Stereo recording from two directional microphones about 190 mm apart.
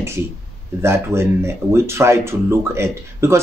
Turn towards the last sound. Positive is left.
turn(degrees=-15)  # may be behind; listen again after turning